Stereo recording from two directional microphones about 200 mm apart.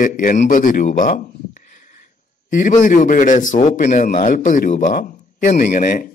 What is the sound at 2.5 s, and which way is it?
A man's voice, 40° left (ahead or behind).